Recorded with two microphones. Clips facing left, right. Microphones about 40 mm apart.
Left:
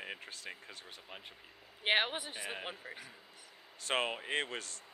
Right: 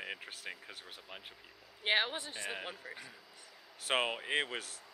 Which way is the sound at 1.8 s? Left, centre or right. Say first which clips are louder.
Left 1 dB; left.